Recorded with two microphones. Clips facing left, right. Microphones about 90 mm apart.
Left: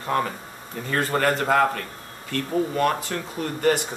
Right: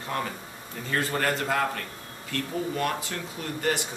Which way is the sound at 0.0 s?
45° left (ahead or behind).